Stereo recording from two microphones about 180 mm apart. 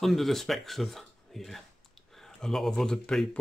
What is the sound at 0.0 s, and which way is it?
Speech, centre (ahead or behind).